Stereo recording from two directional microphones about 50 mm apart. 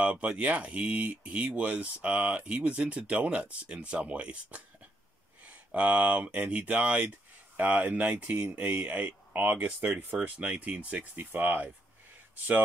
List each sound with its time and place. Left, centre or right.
0.0 s speech: right
11.1 s speech: right